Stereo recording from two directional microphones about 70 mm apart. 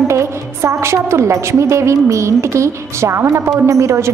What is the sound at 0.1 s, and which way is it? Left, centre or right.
A woman's voice, right.